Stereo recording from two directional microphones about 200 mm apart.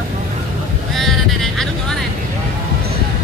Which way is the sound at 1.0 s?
Centre (ahead or behind).